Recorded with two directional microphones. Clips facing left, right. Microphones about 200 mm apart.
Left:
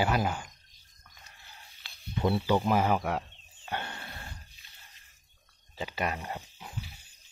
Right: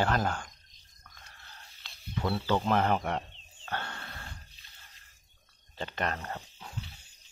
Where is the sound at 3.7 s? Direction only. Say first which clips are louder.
Left 1 dB; 15° left (ahead or behind).